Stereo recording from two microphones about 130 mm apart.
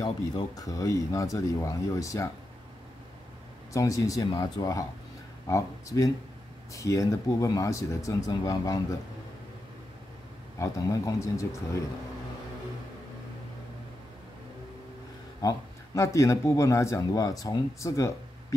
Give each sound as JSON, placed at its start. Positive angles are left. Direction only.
{"t": 0.0, "sound": "speech", "side_deg": 30}
{"t": 3.7, "sound": "speech", "side_deg": 25}
{"t": 10.6, "sound": "speech", "side_deg": 25}
{"t": 15.4, "sound": "speech", "side_deg": 25}